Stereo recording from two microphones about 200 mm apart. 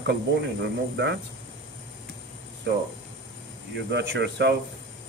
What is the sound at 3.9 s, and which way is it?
Speech, 60° right (ahead or behind).